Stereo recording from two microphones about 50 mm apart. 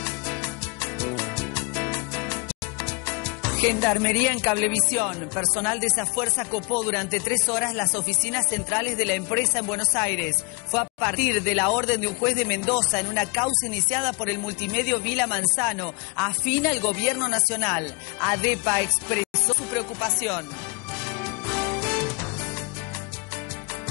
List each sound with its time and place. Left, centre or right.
0.0 s music: left